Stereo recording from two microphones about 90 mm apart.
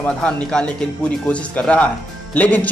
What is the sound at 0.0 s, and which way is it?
Speech, 15° left (ahead or behind).